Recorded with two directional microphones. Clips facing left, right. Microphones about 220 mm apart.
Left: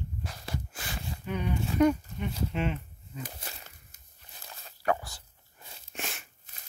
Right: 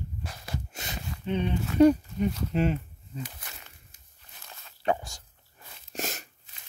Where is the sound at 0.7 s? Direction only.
25° right (ahead or behind).